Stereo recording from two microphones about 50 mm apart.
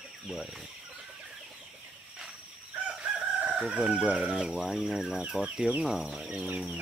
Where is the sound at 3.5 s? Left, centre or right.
Centre.